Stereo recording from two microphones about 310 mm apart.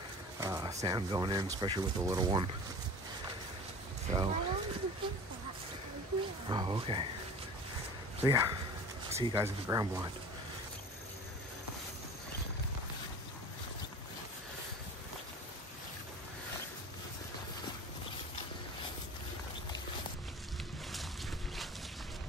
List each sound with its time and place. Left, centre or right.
0.4 s a sound: centre
0.7 s speech: centre
4.1 s speech: centre
6.5 s speech: centre
8.3 s speech: centre